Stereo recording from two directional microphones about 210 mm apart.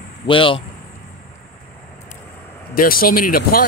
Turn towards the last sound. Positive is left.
turn(degrees=45)  # may be behind; listen again after turning